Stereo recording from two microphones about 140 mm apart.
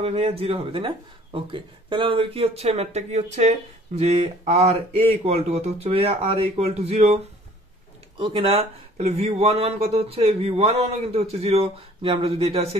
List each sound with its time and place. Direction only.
0.0 s speech: 45° right (ahead or behind)
8.2 s speech: 40° right (ahead or behind)